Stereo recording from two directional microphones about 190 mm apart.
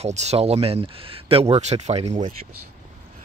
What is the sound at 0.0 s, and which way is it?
Speech, 35° right (ahead or behind).